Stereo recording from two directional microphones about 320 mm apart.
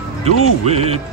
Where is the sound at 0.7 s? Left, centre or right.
Centre.